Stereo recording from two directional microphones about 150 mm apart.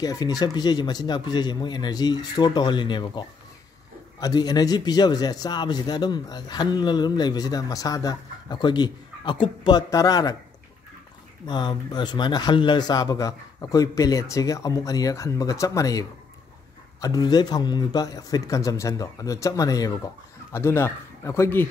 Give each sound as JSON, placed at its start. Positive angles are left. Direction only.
{"t": 0.0, "sound": "a man's voice", "side_deg": 25}
{"t": 11.4, "sound": "a man's voice", "side_deg": 30}